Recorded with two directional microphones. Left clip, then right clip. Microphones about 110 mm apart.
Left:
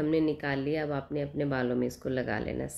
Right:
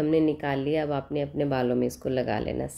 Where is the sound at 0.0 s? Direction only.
40° right (ahead or behind).